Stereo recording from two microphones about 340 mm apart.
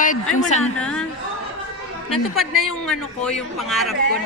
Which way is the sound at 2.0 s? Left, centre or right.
Centre.